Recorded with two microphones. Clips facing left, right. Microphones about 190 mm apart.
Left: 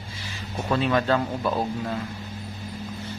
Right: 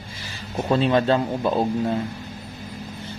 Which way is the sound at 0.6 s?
25° right (ahead or behind).